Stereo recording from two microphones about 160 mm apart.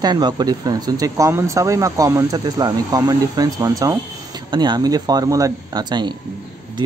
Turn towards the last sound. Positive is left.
turn(degrees=-25)  # may be behind; listen again after turning